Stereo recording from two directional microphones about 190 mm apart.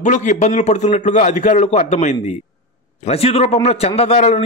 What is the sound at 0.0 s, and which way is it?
A man's voice, 40° left (ahead or behind).